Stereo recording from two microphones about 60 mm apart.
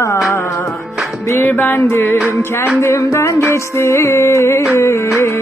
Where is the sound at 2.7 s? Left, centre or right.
Left.